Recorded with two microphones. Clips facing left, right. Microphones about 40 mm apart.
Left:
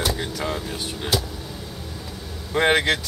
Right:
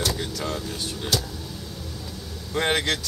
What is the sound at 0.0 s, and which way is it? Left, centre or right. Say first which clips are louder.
Speech: left 2 dB; centre.